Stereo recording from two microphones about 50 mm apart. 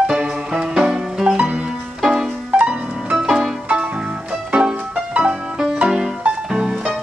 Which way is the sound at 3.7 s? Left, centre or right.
Right.